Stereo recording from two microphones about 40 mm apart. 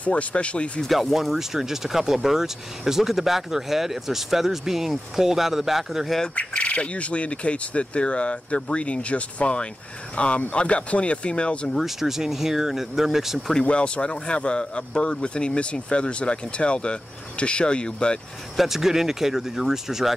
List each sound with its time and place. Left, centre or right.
0.0 s speech: left
0.8 s speech: centre
6.3 s speech: left
11.8 s speech: centre
13.7 s speech: left
18.6 s speech: centre